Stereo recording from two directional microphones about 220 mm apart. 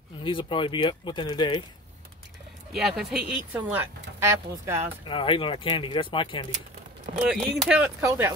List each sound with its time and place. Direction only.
0.2 s speech: 25° left (ahead or behind)
2.7 s speech: centre (ahead or behind)
5.0 s speech: 25° left (ahead or behind)
7.4 s speech: 5° right (ahead or behind)